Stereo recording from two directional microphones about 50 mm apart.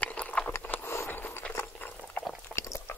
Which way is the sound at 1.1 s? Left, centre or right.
Left.